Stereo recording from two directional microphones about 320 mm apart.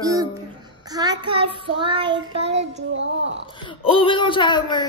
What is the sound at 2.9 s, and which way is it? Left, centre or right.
Speech, right.